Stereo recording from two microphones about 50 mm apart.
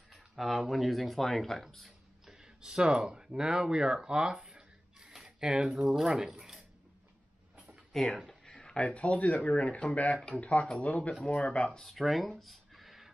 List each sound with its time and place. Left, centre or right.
0.1 s speech: centre
2.2 s speech: centre
7.9 s speech: centre; by 11.8 s left
11.8 s speech: centre